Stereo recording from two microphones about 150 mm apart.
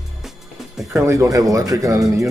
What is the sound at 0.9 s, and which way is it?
Speech, 20° right (ahead or behind).